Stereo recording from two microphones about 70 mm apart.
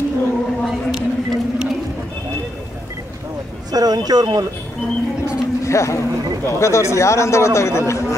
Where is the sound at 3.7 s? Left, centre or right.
Right.